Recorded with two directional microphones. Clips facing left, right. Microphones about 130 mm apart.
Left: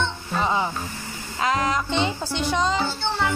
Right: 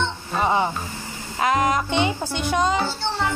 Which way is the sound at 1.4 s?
50° right (ahead or behind).